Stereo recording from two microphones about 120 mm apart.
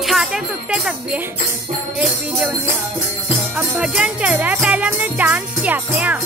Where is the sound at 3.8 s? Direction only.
10° right (ahead or behind).